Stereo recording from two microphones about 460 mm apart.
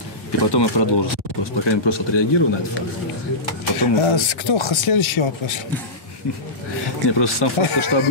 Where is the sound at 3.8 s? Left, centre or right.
Left.